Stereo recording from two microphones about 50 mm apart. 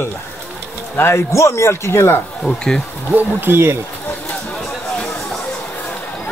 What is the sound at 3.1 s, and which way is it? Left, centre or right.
Speech, right.